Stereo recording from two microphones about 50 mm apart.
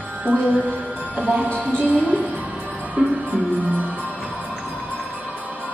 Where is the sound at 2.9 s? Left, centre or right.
Right.